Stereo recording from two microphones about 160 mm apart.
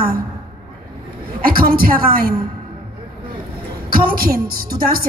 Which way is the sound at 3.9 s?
65° right (ahead or behind).